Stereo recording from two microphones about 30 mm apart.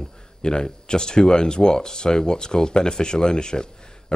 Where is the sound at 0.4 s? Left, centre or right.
Left.